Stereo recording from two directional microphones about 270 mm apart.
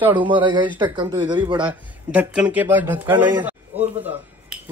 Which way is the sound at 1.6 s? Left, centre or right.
Centre.